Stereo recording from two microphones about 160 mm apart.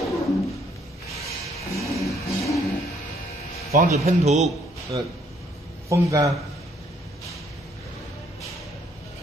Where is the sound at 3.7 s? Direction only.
50° right (ahead or behind).